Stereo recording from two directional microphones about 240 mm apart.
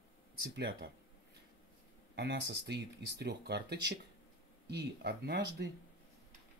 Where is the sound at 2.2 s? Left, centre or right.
Right.